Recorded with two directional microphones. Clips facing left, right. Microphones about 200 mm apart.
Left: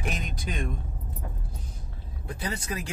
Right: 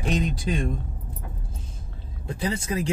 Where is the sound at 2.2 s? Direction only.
25° right (ahead or behind).